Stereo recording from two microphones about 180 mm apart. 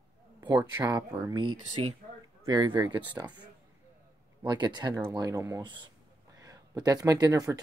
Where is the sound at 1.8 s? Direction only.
35° right (ahead or behind).